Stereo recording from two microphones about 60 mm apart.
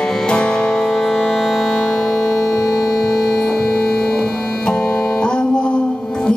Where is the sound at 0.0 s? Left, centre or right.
Centre.